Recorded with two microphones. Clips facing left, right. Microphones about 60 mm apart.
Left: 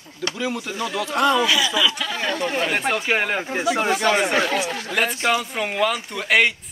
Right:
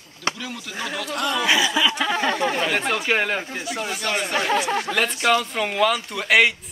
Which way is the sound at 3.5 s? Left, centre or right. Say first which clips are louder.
Left 8 dB; left.